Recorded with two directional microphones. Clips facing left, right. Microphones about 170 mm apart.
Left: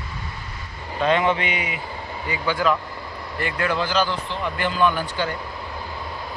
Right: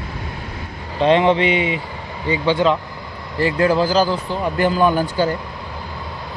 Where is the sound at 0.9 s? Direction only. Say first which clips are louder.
Right 6 dB; 30° right (ahead or behind).